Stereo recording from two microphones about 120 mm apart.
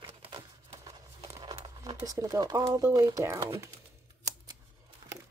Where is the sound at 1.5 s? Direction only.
35° right (ahead or behind).